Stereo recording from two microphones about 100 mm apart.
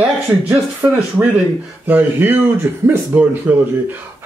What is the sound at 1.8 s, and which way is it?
Speech, 20° right (ahead or behind).